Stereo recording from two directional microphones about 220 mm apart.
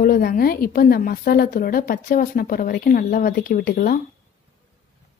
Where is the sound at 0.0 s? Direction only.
40° left (ahead or behind).